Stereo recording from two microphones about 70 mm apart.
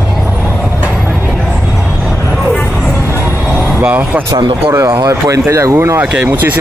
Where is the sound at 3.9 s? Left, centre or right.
Right.